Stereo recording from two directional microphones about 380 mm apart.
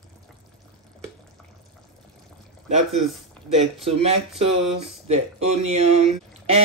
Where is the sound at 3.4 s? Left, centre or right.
Centre.